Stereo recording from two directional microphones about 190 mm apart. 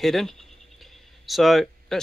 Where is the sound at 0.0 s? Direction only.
Centre (ahead or behind).